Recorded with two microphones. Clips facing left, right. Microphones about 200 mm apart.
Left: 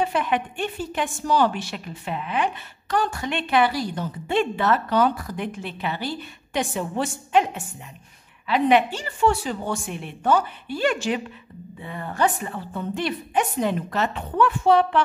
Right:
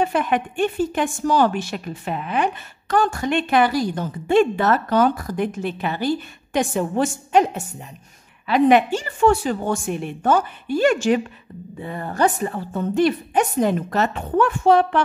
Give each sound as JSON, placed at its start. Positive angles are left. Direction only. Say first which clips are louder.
{"t": 0.0, "sound": "a woman's voice", "louder": "right 3 dB", "side_deg": -50}